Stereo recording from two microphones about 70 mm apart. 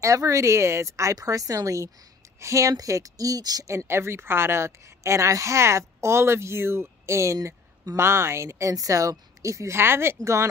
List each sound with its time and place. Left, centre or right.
0.0 s a woman's voice: right
3.6 s a woman's voice: right